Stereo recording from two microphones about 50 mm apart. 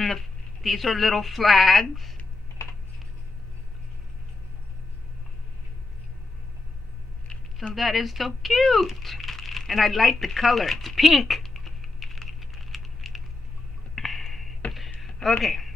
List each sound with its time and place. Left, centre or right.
0.0 s speech: centre
7.7 s speech: centre
10.1 s a sound: centre
15.2 s speech: centre